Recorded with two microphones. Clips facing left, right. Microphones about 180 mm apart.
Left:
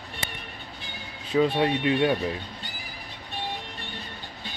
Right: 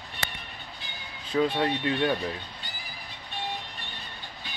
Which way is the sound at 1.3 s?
15° left (ahead or behind).